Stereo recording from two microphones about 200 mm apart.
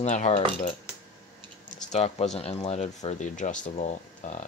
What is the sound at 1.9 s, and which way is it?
Speech, 30° left (ahead or behind).